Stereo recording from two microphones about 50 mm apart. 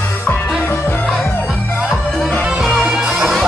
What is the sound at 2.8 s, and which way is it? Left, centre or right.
Music, centre.